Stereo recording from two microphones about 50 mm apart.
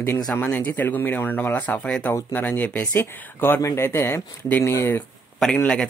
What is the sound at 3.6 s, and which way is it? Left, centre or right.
Speech, left.